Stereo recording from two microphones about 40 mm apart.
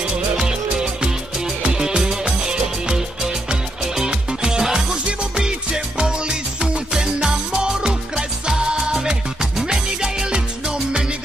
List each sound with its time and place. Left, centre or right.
0.4 s music: centre
4.7 s music: right